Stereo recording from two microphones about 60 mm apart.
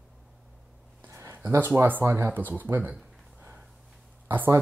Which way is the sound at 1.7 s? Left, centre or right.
Right.